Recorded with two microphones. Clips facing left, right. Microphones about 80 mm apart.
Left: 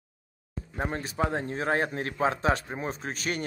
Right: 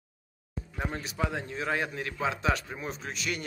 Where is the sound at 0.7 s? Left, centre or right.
Left.